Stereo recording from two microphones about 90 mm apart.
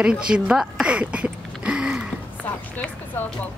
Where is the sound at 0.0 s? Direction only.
10° right (ahead or behind).